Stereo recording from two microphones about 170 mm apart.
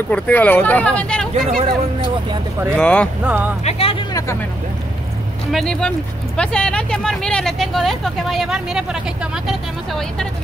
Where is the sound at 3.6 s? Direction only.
35° left (ahead or behind).